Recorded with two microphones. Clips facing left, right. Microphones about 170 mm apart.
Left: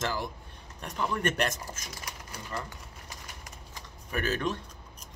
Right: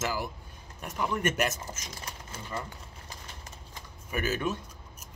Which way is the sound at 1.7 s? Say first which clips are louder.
Even; 25° right (ahead or behind).